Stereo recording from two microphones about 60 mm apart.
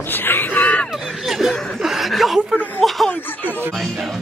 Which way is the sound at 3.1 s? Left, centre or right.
Left.